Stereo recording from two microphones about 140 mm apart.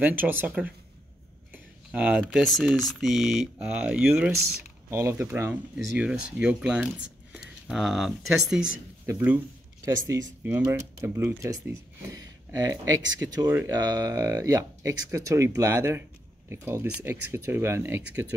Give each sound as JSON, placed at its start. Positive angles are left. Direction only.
{"t": 0.0, "sound": "speech", "side_deg": -15}
{"t": 4.1, "sound": "speech", "side_deg": -15}
{"t": 9.0, "sound": "speech", "side_deg": -15}
{"t": 13.5, "sound": "speech", "side_deg": -15}
{"t": 13.7, "sound": "speech", "side_deg": -25}